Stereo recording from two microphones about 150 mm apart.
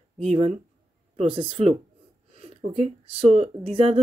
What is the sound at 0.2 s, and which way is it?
Speech, 45° right (ahead or behind).